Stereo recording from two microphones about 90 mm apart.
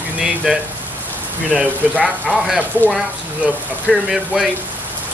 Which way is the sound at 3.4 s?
15° right (ahead or behind).